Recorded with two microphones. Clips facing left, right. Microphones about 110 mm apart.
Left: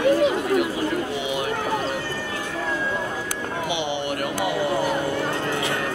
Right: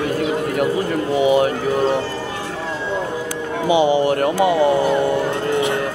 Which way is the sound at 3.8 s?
35° right (ahead or behind).